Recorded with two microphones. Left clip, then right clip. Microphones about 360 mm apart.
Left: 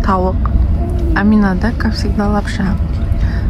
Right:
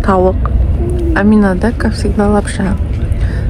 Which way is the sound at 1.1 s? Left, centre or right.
Centre.